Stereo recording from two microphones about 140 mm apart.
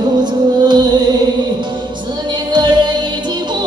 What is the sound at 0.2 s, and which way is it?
Music, 30° right (ahead or behind).